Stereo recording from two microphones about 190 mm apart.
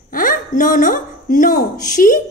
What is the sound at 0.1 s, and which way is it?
A woman's voice, 45° left (ahead or behind).